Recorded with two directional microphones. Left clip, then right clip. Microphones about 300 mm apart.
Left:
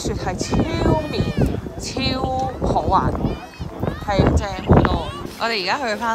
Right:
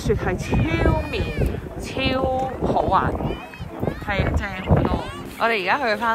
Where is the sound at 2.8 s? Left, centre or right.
Centre.